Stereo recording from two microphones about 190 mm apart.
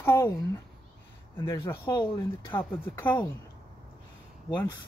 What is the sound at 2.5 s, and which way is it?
Speech, 10° left (ahead or behind).